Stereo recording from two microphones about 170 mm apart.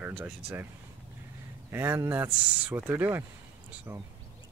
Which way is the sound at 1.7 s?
15° right (ahead or behind).